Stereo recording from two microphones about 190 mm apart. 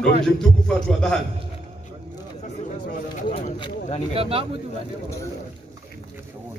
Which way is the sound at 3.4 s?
25° left (ahead or behind).